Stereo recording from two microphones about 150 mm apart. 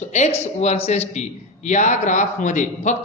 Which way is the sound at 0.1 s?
50° left (ahead or behind).